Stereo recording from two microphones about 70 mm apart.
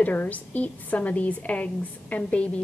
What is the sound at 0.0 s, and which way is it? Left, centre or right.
A woman's voice, left.